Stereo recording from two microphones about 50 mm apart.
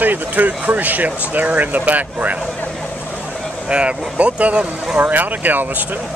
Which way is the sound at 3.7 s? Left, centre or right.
Right.